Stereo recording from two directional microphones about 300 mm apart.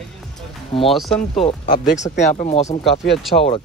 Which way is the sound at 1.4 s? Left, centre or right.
Centre.